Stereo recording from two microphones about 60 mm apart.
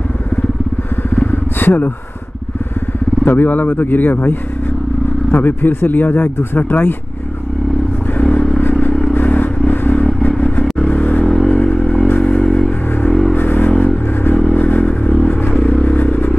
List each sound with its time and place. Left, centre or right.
1.1 s vehicle: left
3.3 s a man's voice: left
8.1 s vehicle: left
11.2 s vehicle: centre
11.5 s vehicle: left
11.8 s vehicle: centre
13.4 s vehicle: left
14.3 s vehicle: left